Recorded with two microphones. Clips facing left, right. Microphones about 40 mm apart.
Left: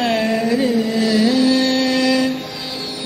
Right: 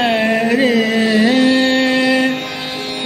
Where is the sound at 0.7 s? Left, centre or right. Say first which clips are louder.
Right 4 dB; right.